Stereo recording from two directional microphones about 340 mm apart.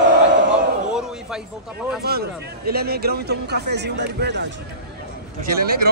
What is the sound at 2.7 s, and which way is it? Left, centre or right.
A man's voice, right.